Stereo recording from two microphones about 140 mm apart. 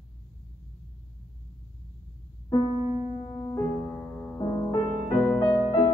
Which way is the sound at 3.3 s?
15° left (ahead or behind).